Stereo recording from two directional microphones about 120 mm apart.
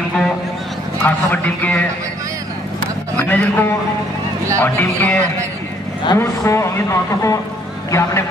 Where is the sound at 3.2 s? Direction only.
15° left (ahead or behind).